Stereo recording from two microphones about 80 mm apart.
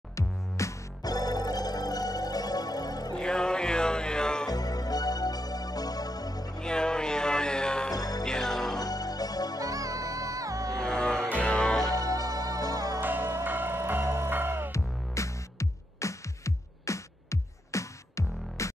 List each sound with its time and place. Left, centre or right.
0.1 s music: left
3.2 s music: centre
4.5 s music: left
6.6 s music: centre
7.9 s music: left
8.2 s music: centre
8.7 s music: left
9.6 s music: right
10.8 s music: centre
12.3 s music: right
13.0 s music: right
14.7 s music: left